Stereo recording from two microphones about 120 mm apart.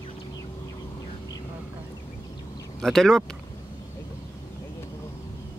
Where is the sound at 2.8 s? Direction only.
5° left (ahead or behind).